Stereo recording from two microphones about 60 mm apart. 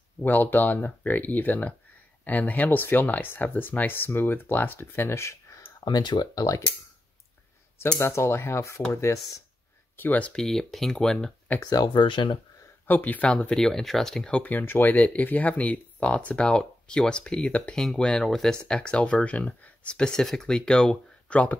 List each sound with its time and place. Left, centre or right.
0.2 s speech: left
6.1 s speech: left
8.0 s speech: left
9.9 s speech: left
10.3 s speech: centre
12.8 s speech: left; by 14.4 s centre
14.4 s speech: left; by 17.5 s centre
17.5 s speech: left
17.7 s speech: centre